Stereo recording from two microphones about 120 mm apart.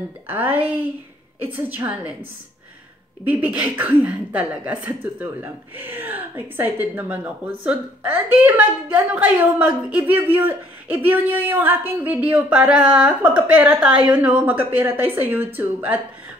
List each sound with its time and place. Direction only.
0.3 s a woman's voice: 15° right (ahead or behind)
3.3 s a woman's voice: 15° right (ahead or behind)